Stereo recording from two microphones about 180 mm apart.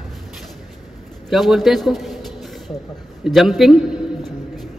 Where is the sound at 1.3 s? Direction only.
Centre (ahead or behind).